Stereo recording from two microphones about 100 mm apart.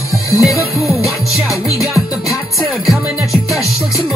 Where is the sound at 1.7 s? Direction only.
30° left (ahead or behind).